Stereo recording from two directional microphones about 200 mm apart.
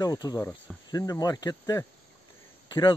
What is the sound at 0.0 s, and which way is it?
Speech, 20° left (ahead or behind).